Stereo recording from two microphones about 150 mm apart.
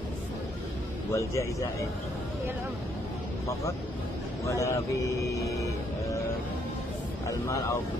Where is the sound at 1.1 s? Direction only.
20° left (ahead or behind).